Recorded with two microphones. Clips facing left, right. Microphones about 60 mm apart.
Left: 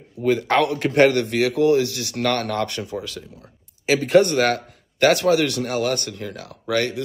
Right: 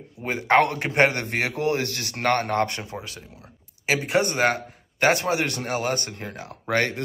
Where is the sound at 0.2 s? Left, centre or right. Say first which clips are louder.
Left 1 dB; right.